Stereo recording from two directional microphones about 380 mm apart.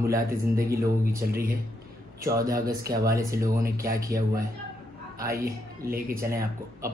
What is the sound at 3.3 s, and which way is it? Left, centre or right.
Speech, right.